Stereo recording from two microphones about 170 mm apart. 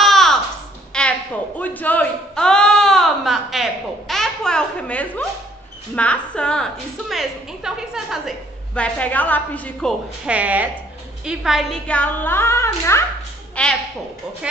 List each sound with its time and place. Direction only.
0.0 s music: centre (ahead or behind)
0.9 s a sound: 5° left (ahead or behind)
1.6 s a woman's voice: 10° left (ahead or behind)
10.2 s speech: 10° right (ahead or behind); by 13.7 s 5° left (ahead or behind)